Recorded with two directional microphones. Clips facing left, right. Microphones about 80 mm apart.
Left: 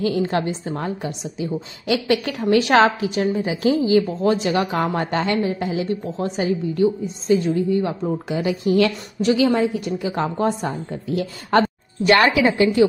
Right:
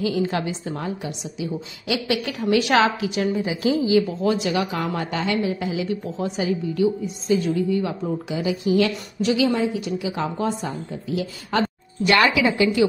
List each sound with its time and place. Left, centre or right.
0.0 s a woman's voice: left